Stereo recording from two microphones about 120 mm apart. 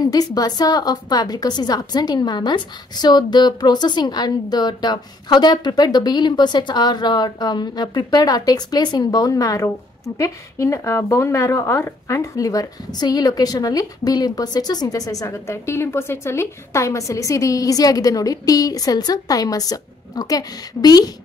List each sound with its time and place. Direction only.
0.0 s a woman's voice: 30° left (ahead or behind)